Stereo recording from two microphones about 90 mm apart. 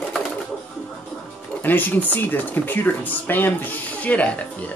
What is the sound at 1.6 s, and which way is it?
Speech, 20° left (ahead or behind).